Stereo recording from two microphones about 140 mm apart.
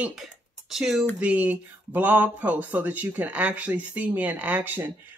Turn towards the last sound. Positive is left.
turn(degrees=-15)  # may be behind; listen again after turning